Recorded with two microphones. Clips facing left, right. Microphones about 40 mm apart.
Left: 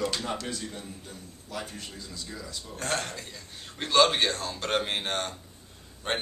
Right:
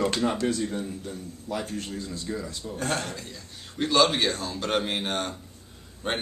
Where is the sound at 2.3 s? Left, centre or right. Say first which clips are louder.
Right 10 dB; right.